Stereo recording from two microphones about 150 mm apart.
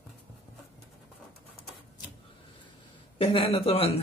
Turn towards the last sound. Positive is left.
turn(degrees=40)  # may be behind; listen again after turning